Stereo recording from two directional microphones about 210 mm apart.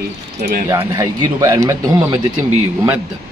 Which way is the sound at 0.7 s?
15° right (ahead or behind).